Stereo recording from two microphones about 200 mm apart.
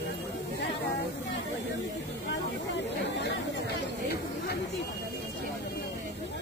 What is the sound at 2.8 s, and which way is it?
Chatter, 60° left (ahead or behind).